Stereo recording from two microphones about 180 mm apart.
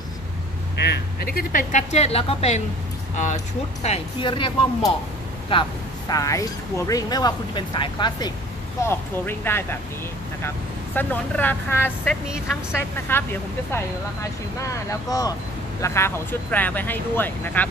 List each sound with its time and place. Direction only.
0.8 s speech: 55° left (ahead or behind); by 8.3 s 25° left (ahead or behind)
8.8 s speech: 10° left (ahead or behind)
11.0 s speech: 10° left (ahead or behind)
14.9 s speech: 20° left (ahead or behind)